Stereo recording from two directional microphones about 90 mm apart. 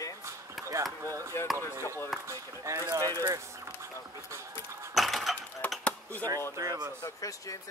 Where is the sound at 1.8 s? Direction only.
30° left (ahead or behind).